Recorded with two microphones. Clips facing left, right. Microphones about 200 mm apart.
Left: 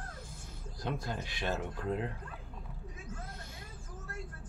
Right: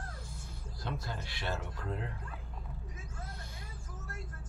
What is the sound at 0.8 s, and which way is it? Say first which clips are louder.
Speech: left 3 dB; 15° left (ahead or behind).